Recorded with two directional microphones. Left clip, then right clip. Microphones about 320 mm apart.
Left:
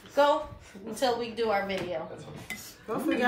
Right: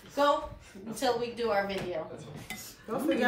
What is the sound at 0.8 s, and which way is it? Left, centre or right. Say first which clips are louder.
Speech: left 2 dB; left.